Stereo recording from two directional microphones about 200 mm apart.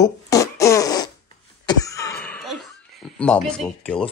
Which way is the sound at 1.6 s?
15° left (ahead or behind).